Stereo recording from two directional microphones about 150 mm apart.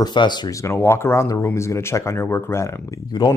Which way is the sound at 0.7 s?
15° left (ahead or behind).